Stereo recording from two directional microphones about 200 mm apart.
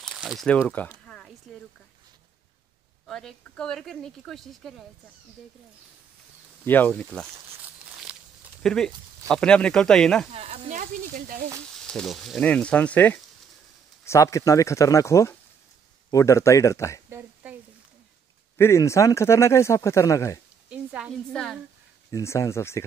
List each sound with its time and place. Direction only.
0.0 s a sound: centre (ahead or behind)
3.1 s speech: centre (ahead or behind)
6.6 s speech: 10° left (ahead or behind)
7.8 s a sound: 5° right (ahead or behind)
8.6 s speech: 5° left (ahead or behind)
10.3 s speech: 30° right (ahead or behind)
11.7 s speech: 5° left (ahead or behind)
17.1 s a sound: 10° right (ahead or behind)
18.6 s speech: 15° left (ahead or behind)
20.7 s speech: 5° right (ahead or behind)
22.1 s speech: 15° left (ahead or behind)